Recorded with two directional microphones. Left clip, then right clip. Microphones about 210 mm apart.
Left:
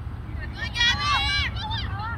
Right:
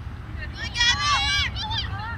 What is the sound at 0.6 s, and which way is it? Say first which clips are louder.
Vehicle: right 1 dB; 40° left (ahead or behind).